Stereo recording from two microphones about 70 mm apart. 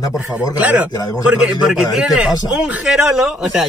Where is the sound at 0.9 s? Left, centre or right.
Left.